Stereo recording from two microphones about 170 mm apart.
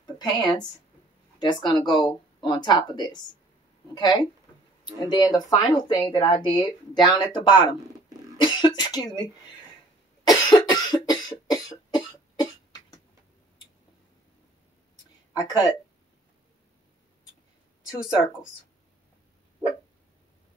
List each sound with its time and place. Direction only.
0.0 s a woman's voice: 25° left (ahead or behind)
10.2 s cough: 25° left (ahead or behind)
15.3 s speech: 20° left (ahead or behind)